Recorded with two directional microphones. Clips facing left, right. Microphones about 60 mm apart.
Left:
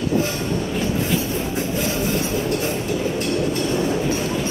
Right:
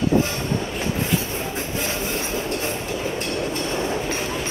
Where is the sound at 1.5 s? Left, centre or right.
Right.